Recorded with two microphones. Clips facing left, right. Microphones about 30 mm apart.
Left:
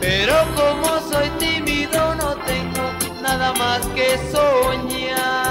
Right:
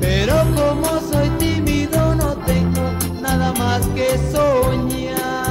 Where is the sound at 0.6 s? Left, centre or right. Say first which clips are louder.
Even; left.